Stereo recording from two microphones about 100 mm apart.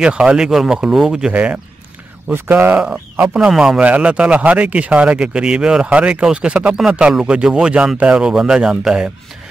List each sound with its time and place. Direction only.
0.0 s speech: 10° right (ahead or behind)